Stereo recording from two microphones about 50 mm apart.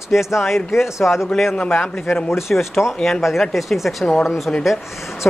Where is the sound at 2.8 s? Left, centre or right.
Left.